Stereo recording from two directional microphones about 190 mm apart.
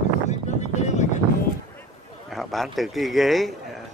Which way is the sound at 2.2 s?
Centre (ahead or behind).